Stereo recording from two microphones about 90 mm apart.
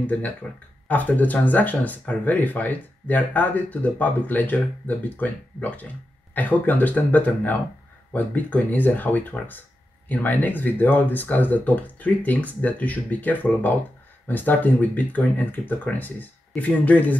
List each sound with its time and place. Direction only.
0.0 s speech: 15° left (ahead or behind)